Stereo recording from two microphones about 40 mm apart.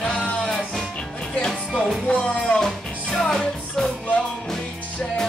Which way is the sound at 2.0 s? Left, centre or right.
Left.